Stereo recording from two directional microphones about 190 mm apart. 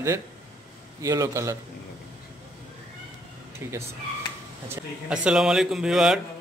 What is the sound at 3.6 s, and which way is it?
A man's voice, 10° right (ahead or behind).